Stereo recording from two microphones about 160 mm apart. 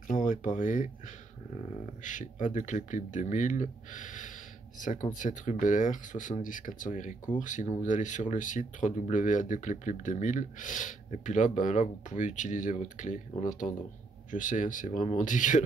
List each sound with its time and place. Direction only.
0.1 s speech: 55° left (ahead or behind)
2.0 s speech: 50° left (ahead or behind)